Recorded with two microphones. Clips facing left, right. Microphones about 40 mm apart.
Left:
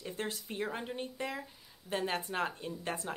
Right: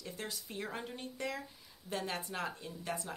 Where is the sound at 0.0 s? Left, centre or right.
Left.